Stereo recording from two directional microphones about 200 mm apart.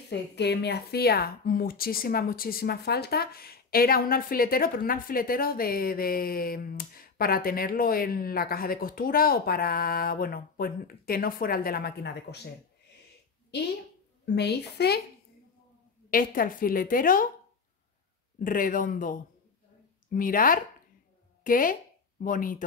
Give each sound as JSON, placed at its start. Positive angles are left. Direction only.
{"t": 0.1, "sound": "speech", "side_deg": 55}
{"t": 14.2, "sound": "a woman's voice", "side_deg": 55}
{"t": 16.1, "sound": "speech", "side_deg": 45}
{"t": 18.4, "sound": "speech", "side_deg": 45}